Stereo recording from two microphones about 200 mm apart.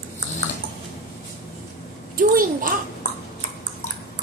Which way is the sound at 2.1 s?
45° right (ahead or behind).